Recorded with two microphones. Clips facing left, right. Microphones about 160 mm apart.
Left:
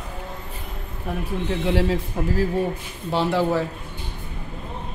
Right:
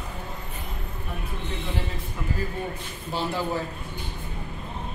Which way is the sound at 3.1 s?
70° left (ahead or behind).